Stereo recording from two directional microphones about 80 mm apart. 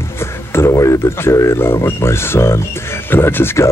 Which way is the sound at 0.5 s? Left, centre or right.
Left.